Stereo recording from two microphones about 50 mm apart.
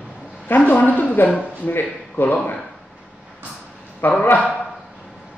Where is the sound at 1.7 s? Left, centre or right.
Left.